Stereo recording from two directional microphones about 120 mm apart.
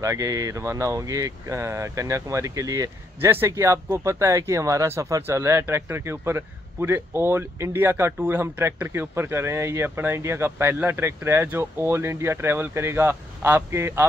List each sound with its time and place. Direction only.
0.0 s speech: 25° right (ahead or behind)